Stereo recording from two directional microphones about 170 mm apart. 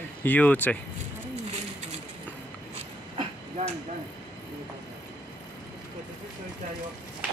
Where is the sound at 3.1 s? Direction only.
40° right (ahead or behind).